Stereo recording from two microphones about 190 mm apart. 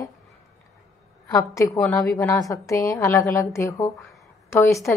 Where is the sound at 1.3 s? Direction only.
15° left (ahead or behind).